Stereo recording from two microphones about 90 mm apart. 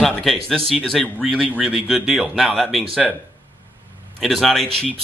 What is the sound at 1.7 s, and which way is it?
Speech, 5° right (ahead or behind).